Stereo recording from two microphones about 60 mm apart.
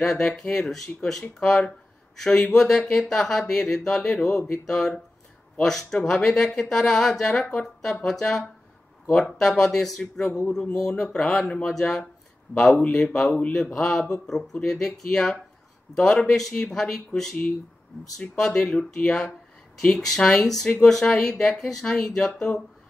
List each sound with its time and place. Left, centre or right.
0.0 s speech: centre